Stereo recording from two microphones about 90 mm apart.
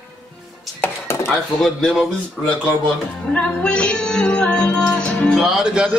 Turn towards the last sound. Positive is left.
turn(degrees=-5)  # may be behind; listen again after turning